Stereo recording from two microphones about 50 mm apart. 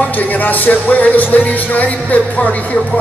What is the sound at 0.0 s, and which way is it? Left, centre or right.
Music, left.